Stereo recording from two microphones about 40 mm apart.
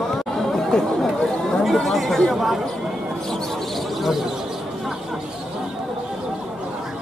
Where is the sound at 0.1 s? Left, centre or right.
Centre.